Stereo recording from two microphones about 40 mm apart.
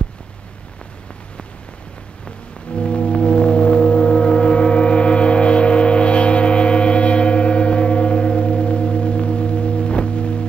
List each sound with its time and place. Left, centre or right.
2.8 s foghorn: left